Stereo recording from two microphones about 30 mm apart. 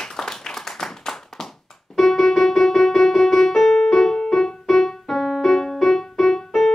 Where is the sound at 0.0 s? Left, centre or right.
Centre.